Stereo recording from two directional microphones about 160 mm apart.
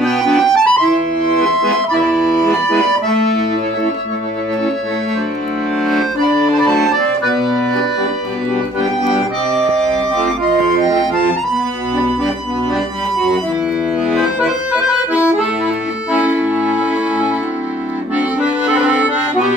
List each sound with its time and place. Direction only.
0.0 s accordion: centre (ahead or behind)
2.7 s accordion: centre (ahead or behind)
7.2 s accordion: centre (ahead or behind)
14.1 s accordion: 5° right (ahead or behind)
18.9 s accordion: 5° right (ahead or behind)